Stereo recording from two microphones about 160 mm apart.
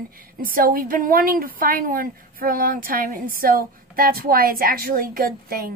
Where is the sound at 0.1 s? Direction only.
65° right (ahead or behind).